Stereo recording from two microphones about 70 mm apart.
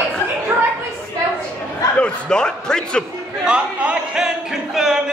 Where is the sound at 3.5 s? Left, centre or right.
Centre.